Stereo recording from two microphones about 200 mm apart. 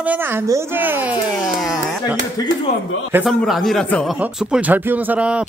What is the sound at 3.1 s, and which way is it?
Speech, centre (ahead or behind).